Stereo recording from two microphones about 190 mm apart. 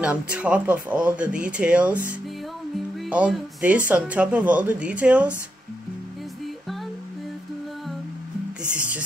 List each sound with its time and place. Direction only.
0.0 s speech: 5° right (ahead or behind)
3.1 s speech: 5° right (ahead or behind)